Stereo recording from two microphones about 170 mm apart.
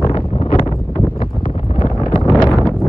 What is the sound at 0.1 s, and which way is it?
Wind noise, 35° left (ahead or behind).